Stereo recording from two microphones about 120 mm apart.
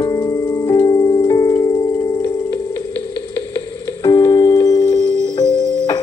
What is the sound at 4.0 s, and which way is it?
Music, 30° left (ahead or behind).